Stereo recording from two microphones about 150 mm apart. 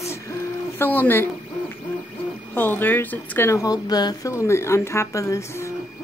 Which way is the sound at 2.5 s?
15° left (ahead or behind).